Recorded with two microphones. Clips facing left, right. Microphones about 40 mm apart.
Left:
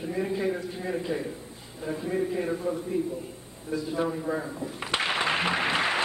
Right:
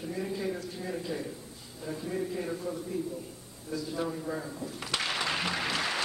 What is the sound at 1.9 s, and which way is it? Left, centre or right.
A man's voice, left.